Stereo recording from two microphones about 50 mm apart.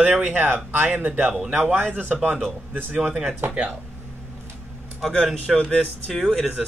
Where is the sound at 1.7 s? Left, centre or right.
Right.